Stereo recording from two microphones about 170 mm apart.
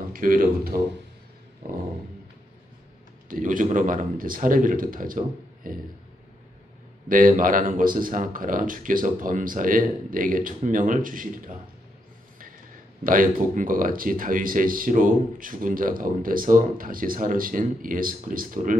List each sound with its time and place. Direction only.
0.1 s a man's voice: 55° right (ahead or behind)
3.3 s speech: 50° right (ahead or behind)
7.1 s speech: 55° right (ahead or behind)
13.0 s speech: 55° right (ahead or behind)